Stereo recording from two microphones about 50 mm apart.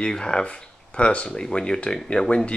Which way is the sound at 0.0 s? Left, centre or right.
Centre.